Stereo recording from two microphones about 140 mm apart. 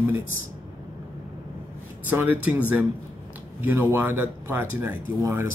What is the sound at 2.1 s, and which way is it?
Speech, 15° right (ahead or behind).